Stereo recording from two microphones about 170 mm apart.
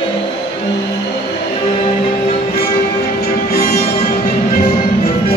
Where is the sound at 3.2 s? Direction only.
65° left (ahead or behind).